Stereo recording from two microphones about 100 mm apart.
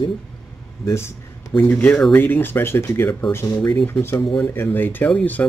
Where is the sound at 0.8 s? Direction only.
25° left (ahead or behind).